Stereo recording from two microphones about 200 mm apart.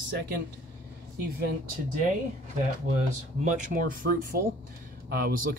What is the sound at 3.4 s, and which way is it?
Speech, 45° right (ahead or behind).